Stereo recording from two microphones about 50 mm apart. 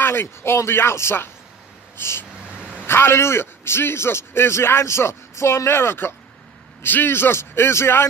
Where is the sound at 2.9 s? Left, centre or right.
Left.